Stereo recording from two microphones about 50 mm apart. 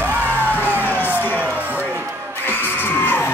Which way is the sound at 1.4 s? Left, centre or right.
Right.